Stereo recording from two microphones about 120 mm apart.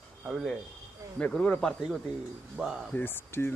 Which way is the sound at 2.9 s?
15° left (ahead or behind).